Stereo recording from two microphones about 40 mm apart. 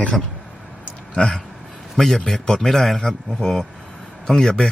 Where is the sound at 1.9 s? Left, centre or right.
Centre.